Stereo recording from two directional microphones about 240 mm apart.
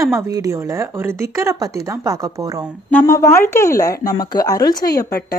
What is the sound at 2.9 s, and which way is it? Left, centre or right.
Speech, centre.